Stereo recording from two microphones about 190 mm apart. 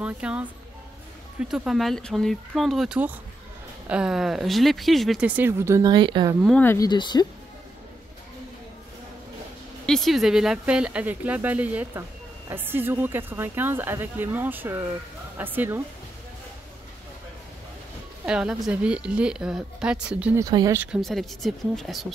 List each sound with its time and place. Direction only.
0.0 s speech: 5° right (ahead or behind)
1.5 s speech: centre (ahead or behind); by 6.3 s 25° right (ahead or behind)
6.4 s speech: 5° left (ahead or behind)
6.9 s speech: 25° left (ahead or behind)
9.8 s speech: centre (ahead or behind)
18.2 s speech: 5° right (ahead or behind)
20.4 s speech: 20° right (ahead or behind)
20.8 s speech: centre (ahead or behind)